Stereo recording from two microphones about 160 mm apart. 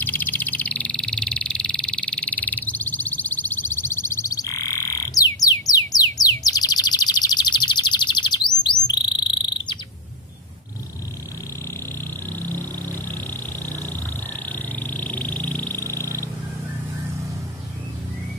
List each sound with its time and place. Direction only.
0.0 s frog: 10° left (ahead or behind); by 8.5 s 30° left (ahead or behind)
9.0 s insect: 30° left (ahead or behind)
12.3 s a sound: 10° left (ahead or behind)
14.5 s vehicle: 10° left (ahead or behind)